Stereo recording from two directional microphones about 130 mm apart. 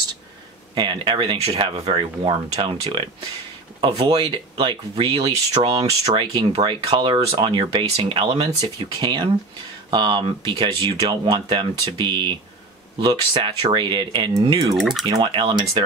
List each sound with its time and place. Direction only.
0.7 s speech: 35° right (ahead or behind)
6.5 s speech: 35° right (ahead or behind)
14.8 s speech: centre (ahead or behind)
15.0 s speech: 35° right (ahead or behind)